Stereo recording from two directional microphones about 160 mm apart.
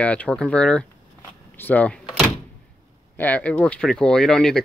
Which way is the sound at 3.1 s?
10° left (ahead or behind).